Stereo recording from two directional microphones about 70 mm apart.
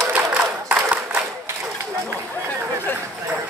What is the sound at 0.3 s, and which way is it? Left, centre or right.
Applause, right.